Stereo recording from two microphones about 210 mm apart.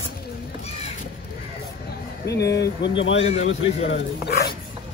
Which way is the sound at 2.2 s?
50° left (ahead or behind).